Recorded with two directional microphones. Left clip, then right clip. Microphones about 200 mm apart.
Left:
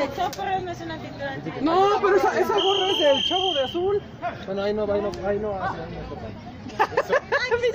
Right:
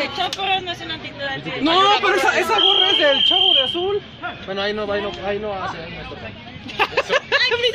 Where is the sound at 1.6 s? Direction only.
25° right (ahead or behind).